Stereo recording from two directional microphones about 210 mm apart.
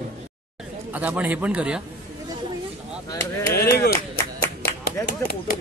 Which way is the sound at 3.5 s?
50° left (ahead or behind).